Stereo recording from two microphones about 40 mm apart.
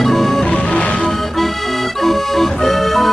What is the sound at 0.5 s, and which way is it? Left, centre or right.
Music, left.